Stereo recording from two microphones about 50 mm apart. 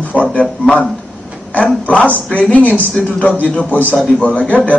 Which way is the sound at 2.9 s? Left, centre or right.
Centre.